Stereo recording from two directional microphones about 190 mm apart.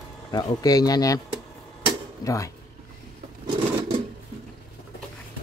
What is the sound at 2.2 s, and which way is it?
Speech, 15° left (ahead or behind).